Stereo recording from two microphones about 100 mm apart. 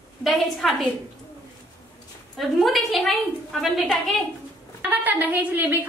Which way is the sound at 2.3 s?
Centre (ahead or behind).